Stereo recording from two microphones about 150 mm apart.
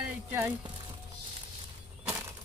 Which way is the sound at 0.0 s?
15° right (ahead or behind).